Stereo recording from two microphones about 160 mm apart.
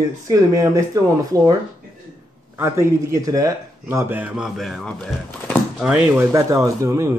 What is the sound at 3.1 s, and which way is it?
Speech, 20° right (ahead or behind).